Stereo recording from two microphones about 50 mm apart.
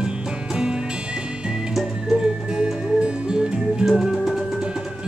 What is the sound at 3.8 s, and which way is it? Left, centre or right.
Music, centre.